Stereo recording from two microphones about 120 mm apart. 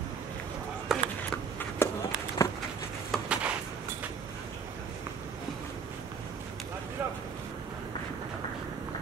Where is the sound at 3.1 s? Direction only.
5° left (ahead or behind).